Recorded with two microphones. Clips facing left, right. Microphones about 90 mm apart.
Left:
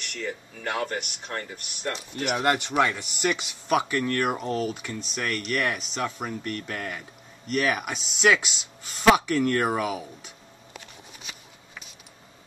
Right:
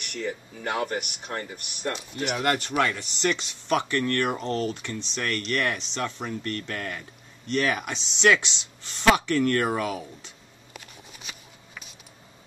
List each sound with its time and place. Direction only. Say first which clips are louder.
0.0 s speech: right 2 dB; 20° right (ahead or behind)
2.3 s speech: left 2 dB; 20° left (ahead or behind)